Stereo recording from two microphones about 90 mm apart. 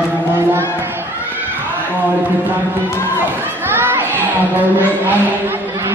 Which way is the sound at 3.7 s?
25° right (ahead or behind).